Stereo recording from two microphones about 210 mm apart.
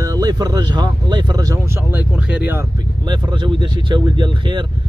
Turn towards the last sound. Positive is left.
turn(degrees=-20)  # may be behind; listen again after turning